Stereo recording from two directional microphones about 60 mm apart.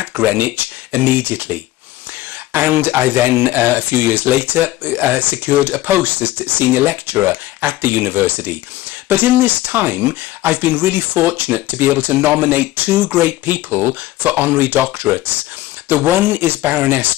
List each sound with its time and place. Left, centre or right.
0.0 s speech: right